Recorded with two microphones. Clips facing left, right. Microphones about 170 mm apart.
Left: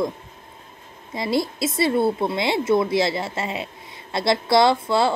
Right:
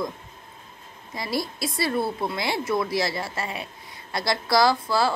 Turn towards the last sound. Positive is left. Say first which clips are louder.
# left 3 dB
turn(degrees=25)  # may be behind; listen again after turning